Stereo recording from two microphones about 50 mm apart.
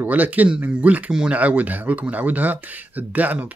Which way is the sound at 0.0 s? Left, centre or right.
Right.